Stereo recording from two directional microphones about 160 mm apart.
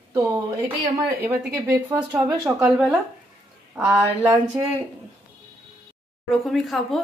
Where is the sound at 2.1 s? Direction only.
10° right (ahead or behind).